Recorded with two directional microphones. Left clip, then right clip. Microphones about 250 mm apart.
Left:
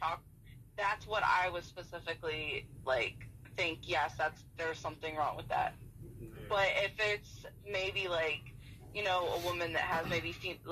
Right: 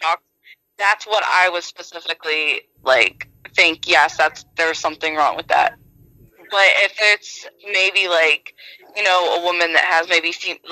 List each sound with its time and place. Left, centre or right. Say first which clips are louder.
0.7 s speech: right 17 dB; right